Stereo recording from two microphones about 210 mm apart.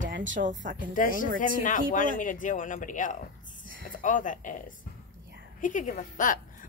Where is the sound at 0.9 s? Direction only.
40° left (ahead or behind).